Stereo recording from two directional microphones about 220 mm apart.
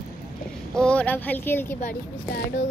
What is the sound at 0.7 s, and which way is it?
A woman's voice, 5° left (ahead or behind).